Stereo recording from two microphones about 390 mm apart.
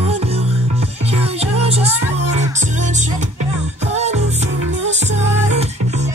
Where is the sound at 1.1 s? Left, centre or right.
Centre.